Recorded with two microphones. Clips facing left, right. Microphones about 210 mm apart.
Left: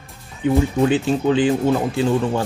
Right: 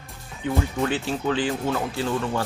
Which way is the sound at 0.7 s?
20° left (ahead or behind).